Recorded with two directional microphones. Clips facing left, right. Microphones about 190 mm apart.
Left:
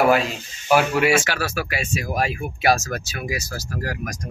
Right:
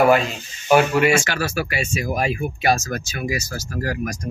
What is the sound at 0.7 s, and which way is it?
Speech, 5° left (ahead or behind).